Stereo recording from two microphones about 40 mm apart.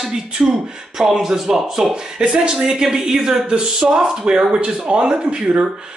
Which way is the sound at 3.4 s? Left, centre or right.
Right.